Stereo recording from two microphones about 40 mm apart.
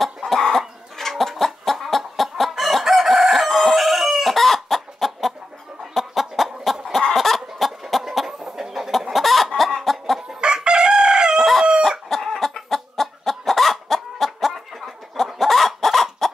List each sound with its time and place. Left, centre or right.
0.2 s chicken: left
0.6 s chicken: centre
8.9 s chicken: centre
10.4 s chicken: right
12.1 s chicken: centre